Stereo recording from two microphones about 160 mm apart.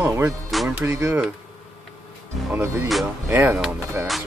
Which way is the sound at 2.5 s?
15° right (ahead or behind).